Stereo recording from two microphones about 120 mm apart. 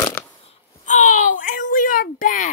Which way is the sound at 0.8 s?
90° left.